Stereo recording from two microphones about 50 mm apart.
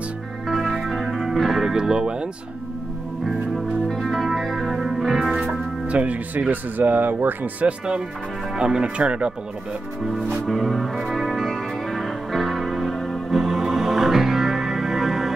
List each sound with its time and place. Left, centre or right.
0.5 s music: centre
1.6 s speech: centre
3.3 s music: centre
5.5 s music: right
6.5 s speech: right
7.6 s speech: right
10.0 s music: centre
13.3 s music: centre